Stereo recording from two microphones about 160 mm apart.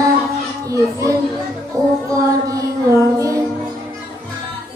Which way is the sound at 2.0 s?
20° right (ahead or behind).